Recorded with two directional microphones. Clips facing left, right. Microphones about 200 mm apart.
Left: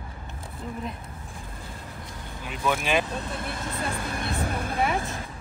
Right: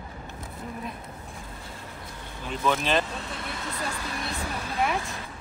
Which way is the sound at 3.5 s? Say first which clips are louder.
Left 2 dB; 55° left (ahead or behind).